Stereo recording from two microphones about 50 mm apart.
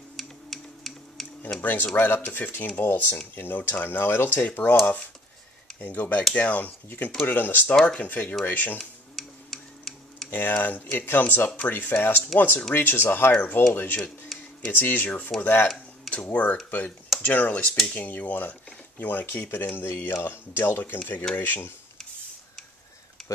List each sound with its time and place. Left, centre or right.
0.2 s a sound: centre
1.6 s speech: left
4.6 s speech: left
9.1 s tick-tock: centre
10.3 s speech: left
13.3 s speech: left
19.9 s speech: left
21.4 s speech: left
23.2 s a sound: centre